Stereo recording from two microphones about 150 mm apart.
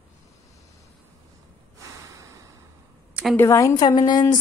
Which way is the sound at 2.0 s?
20° right (ahead or behind).